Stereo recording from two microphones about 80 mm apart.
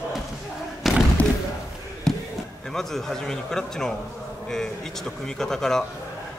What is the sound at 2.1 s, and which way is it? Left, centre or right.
Basketball bounce, centre.